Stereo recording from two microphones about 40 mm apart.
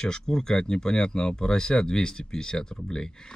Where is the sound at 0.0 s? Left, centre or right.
Centre.